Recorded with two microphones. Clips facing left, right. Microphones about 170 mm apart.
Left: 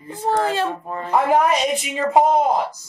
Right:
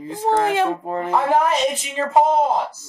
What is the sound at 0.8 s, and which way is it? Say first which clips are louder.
Speech: right 5 dB; 75° right (ahead or behind).